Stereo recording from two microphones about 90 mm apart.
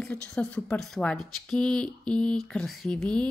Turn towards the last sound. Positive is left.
turn(degrees=10)  # may be behind; listen again after turning